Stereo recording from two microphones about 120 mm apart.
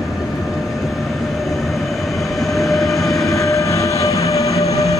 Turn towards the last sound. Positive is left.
turn(degrees=25)  # may be behind; listen again after turning